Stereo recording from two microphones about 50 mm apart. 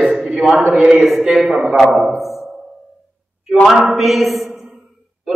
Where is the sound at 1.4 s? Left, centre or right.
Centre.